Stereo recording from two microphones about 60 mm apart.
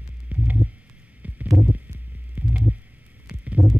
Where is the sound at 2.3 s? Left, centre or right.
Right.